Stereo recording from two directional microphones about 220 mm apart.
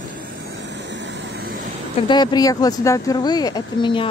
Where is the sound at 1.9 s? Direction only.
20° left (ahead or behind).